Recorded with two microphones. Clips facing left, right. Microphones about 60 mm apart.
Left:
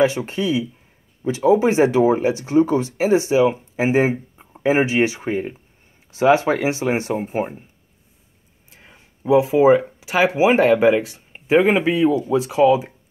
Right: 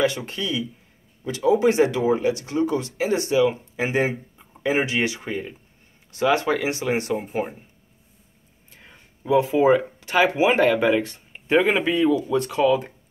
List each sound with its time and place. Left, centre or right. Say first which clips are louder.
0.0 s speech: left 5 dB; left
6.1 s speech: left 5 dB; left
8.7 s a sound: left 1 dB; centre
9.4 s speech: left 3 dB; centre